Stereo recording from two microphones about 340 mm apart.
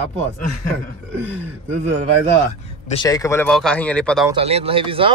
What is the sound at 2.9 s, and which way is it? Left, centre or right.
Speech, centre.